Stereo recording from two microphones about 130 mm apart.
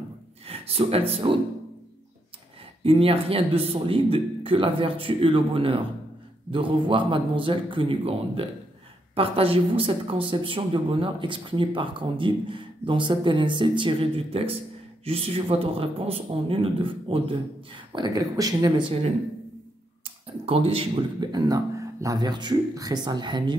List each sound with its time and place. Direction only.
0.5 s speech: 50° right (ahead or behind)
2.8 s speech: 45° right (ahead or behind); by 18.9 s 30° right (ahead or behind)
20.4 s speech: 45° right (ahead or behind)